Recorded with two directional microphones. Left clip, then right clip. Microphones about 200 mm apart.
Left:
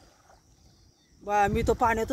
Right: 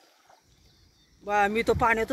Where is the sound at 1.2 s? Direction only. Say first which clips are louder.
Right 1 dB; 20° left (ahead or behind).